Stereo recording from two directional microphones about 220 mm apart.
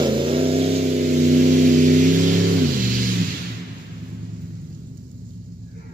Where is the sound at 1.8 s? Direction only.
35° right (ahead or behind).